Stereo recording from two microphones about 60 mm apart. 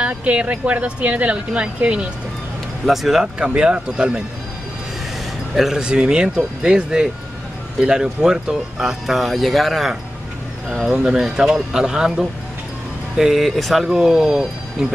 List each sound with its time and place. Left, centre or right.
0.0 s speech: right
2.9 s speech: centre
3.3 s speech: centre
5.5 s speech: centre
13.8 s speech: centre